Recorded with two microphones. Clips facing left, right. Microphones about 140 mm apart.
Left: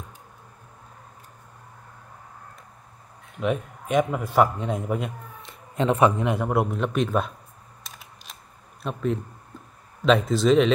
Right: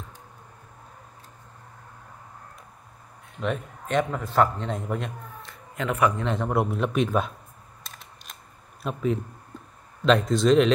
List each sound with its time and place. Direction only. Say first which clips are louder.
3.3 s a man's voice: left 3 dB; 5° left (ahead or behind)
5.5 s a sound: left 6 dB; 25° left (ahead or behind)
6.2 s speech: left 2 dB; 10° left (ahead or behind)
7.8 s camera: left 1 dB; centre (ahead or behind)
8.8 s speech: even; centre (ahead or behind)